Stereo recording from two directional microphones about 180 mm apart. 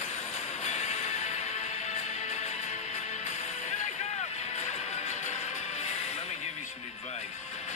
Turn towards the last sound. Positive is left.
turn(degrees=40)  # may be behind; listen again after turning